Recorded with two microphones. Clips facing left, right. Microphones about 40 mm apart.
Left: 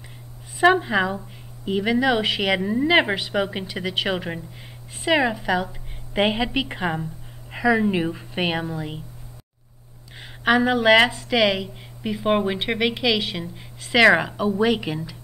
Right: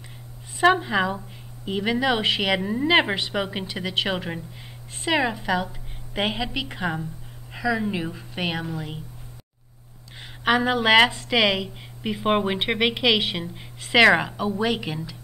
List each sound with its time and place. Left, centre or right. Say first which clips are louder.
0.6 s speech: left 2 dB; centre
6.1 s a woman's voice: left 5 dB; centre
10.4 s a woman's voice: left 3 dB; centre; by 13.5 s right
13.9 s speech: left 1 dB; centre